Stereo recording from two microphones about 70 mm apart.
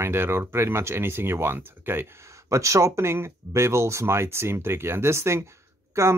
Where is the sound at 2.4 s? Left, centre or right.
Right.